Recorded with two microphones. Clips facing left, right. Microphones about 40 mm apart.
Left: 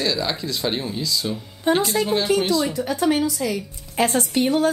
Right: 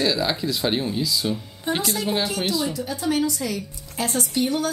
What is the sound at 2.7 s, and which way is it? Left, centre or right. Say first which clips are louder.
Speech: left 6 dB; left.